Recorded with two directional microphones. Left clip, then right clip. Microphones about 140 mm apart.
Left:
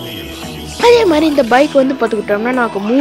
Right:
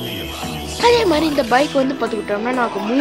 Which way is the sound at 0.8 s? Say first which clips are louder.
Left 5 dB; 35° left (ahead or behind).